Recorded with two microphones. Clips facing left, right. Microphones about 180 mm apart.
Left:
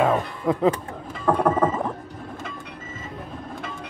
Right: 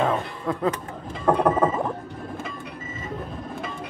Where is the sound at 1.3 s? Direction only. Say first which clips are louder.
Right 1 dB; 20° right (ahead or behind).